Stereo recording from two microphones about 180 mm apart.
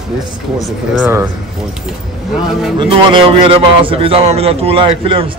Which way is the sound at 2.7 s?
30° right (ahead or behind).